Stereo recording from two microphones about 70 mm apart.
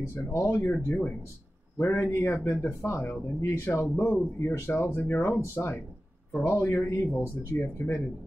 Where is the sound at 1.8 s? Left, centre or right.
Left.